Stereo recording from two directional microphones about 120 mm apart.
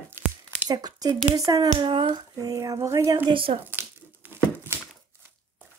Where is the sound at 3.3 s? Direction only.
45° right (ahead or behind).